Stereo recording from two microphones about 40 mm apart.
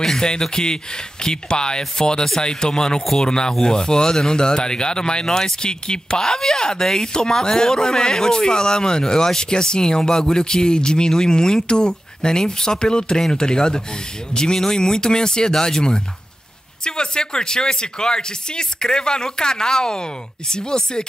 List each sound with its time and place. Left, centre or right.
0.0 s speech: centre